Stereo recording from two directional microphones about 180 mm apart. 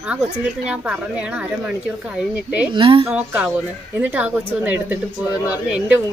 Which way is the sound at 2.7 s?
30° right (ahead or behind).